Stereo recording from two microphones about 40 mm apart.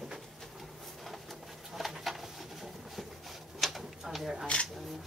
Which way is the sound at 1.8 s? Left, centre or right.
Centre.